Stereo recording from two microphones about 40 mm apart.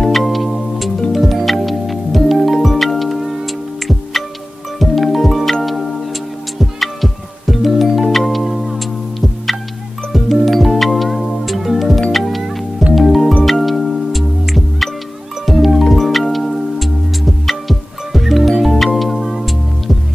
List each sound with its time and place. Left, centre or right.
0.1 s music: centre
10.1 s music: centre